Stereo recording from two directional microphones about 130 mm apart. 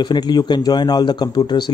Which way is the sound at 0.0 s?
35° left (ahead or behind).